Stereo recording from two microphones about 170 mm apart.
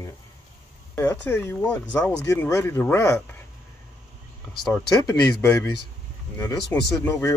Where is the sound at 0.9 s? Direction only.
15° left (ahead or behind).